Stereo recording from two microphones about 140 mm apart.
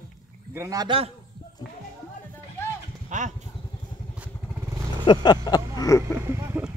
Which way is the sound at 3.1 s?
65° right (ahead or behind).